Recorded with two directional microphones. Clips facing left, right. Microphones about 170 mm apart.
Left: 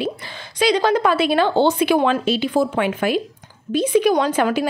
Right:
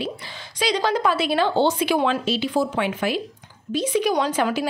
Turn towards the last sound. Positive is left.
turn(degrees=55)  # may be behind; listen again after turning